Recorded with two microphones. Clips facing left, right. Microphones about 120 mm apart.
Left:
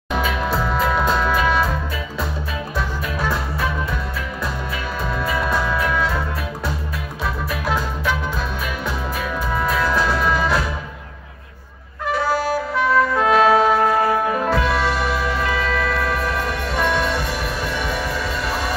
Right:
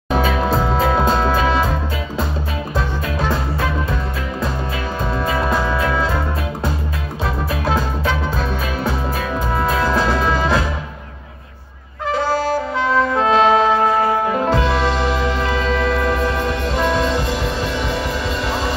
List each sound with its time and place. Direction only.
0.1 s music: 30° right (ahead or behind)
5.2 s music: 25° right (ahead or behind)
9.6 s music: 30° right (ahead or behind)
12.7 s music: 25° right (ahead or behind)